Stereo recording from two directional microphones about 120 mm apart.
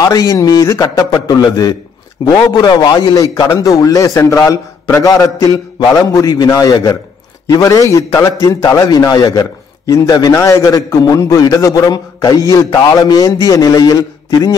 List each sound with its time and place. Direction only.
0.0 s a man's voice: 30° left (ahead or behind)